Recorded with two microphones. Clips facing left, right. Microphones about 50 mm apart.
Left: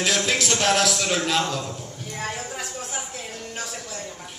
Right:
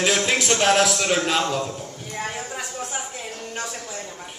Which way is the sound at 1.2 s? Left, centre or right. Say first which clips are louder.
Right 2 dB; centre.